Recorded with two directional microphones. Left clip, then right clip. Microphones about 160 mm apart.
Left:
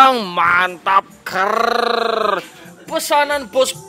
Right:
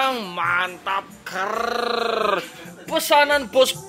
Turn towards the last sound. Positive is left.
turn(degrees=5)  # may be behind; listen again after turning